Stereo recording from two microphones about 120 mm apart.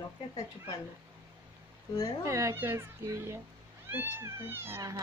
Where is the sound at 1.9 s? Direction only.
30° left (ahead or behind).